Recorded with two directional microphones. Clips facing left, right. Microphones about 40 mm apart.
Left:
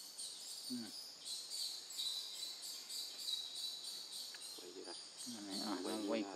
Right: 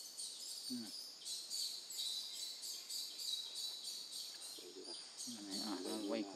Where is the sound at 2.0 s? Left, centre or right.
Left.